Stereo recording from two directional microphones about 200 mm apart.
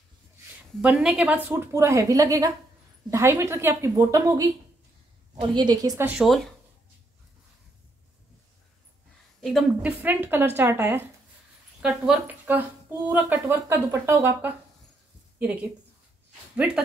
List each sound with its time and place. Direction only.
0.7 s a woman's voice: 5° right (ahead or behind)
9.4 s a woman's voice: centre (ahead or behind)